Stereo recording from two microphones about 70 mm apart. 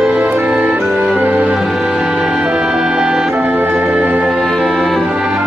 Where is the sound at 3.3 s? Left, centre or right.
Right.